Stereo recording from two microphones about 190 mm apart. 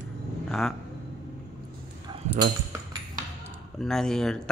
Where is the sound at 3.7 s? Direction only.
Centre (ahead or behind).